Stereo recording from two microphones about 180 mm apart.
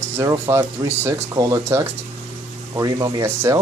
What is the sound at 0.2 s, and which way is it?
Speech, 15° right (ahead or behind).